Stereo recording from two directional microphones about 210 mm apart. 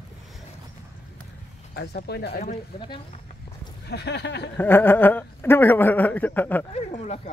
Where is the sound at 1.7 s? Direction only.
50° left (ahead or behind).